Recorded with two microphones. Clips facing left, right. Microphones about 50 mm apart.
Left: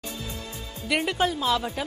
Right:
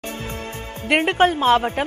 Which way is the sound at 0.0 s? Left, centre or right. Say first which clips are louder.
Right 6 dB; right.